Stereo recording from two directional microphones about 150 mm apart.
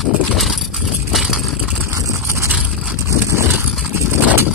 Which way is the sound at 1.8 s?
20° right (ahead or behind).